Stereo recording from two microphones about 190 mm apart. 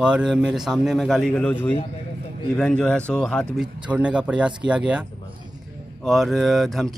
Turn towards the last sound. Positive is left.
turn(degrees=0)  # may be behind; listen again after turning